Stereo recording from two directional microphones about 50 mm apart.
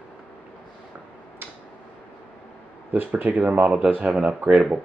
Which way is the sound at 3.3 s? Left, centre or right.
Right.